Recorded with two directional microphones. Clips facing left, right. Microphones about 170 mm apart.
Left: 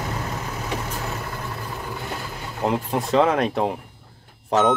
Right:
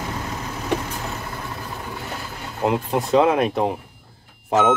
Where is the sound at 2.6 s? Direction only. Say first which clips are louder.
Right 2 dB; centre (ahead or behind).